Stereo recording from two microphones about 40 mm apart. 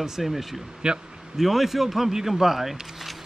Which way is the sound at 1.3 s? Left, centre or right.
Centre.